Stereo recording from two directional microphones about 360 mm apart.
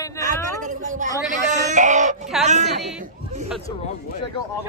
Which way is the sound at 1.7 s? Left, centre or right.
Centre.